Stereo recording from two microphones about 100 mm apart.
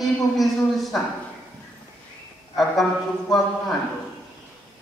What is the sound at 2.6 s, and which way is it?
Speech, centre (ahead or behind).